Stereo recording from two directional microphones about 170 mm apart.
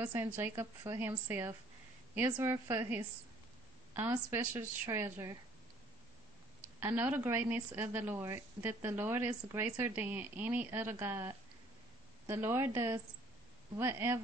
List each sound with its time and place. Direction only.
0.0 s a woman's voice: 10° right (ahead or behind)
6.8 s a woman's voice: 10° right (ahead or behind)